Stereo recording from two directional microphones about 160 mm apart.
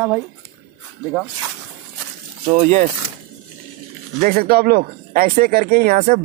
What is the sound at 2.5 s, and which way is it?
Speech, 50° right (ahead or behind).